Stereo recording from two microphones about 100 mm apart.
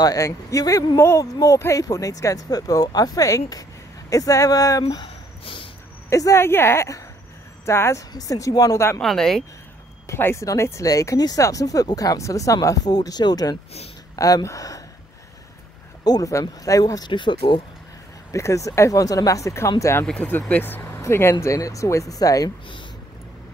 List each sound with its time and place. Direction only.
0.0 s speech: 35° left (ahead or behind)
5.0 s a sound: 60° left (ahead or behind)
6.0 s speech: 30° left (ahead or behind)
9.0 s speech: 5° left (ahead or behind)
10.0 s speech: 25° left (ahead or behind)
16.0 s speech: 40° left (ahead or behind)
17.1 s speech: 55° left (ahead or behind)
18.3 s speech: 30° left (ahead or behind)